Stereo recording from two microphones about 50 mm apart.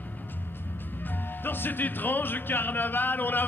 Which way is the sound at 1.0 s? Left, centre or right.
Left.